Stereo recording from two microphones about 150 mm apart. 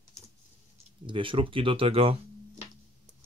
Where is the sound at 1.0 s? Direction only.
35° right (ahead or behind).